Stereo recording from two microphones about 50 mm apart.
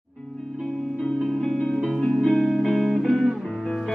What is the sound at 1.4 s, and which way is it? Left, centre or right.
Music, centre.